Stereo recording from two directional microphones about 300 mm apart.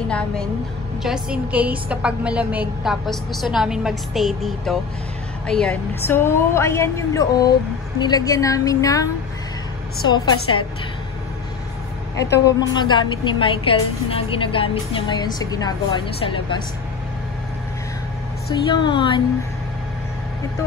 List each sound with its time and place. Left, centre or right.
0.1 s a woman's voice: centre
12.4 s a woman's voice: centre
18.5 s a woman's voice: centre